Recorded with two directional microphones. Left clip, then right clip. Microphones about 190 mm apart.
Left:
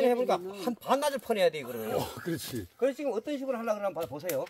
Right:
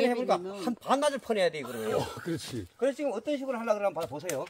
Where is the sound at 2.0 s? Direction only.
60° left (ahead or behind).